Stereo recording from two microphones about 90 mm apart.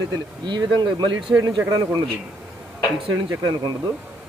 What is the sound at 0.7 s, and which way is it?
Speech, 55° right (ahead or behind).